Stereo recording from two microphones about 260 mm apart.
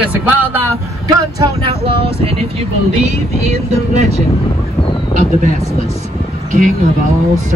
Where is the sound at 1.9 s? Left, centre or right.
Right.